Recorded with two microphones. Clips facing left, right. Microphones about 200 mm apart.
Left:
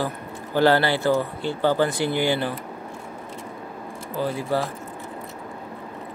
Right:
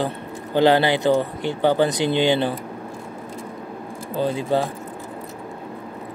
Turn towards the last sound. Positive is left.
turn(degrees=-20)  # may be behind; listen again after turning